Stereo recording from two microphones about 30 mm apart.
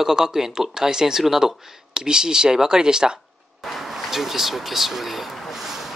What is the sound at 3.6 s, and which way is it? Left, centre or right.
Vehicle, centre.